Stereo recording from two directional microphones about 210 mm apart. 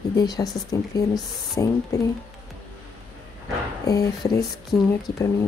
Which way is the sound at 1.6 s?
15° left (ahead or behind).